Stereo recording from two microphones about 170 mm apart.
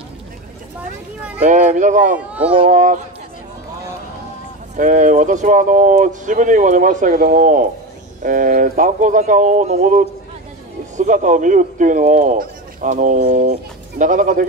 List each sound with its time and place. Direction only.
1.4 s speech: 50° right (ahead or behind)
4.7 s speech: 50° right (ahead or behind)